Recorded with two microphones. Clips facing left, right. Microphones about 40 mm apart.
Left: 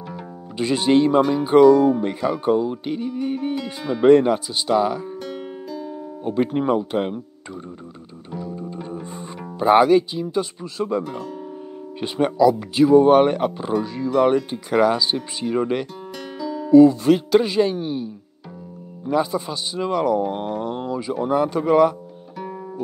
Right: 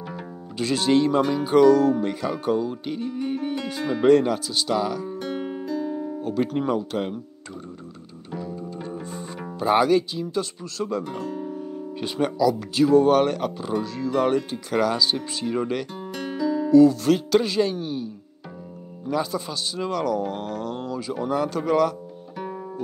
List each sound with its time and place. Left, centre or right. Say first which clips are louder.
0.6 s music: left 3 dB; centre
5.2 s music: right 2 dB; centre
6.2 s speech: left 5 dB; centre
8.3 s music: left 1 dB; centre
9.0 s music: even; centre
11.1 s speech: right 1 dB; centre
11.5 s speech: right 2 dB; centre
13.8 s music: left 5 dB; centre
16.2 s music: right 4 dB; centre
16.7 s music: left 4 dB; left